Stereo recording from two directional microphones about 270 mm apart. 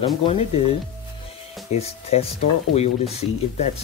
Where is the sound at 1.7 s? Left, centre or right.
Left.